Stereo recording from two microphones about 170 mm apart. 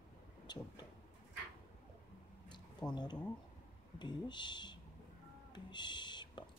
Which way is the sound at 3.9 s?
25° left (ahead or behind).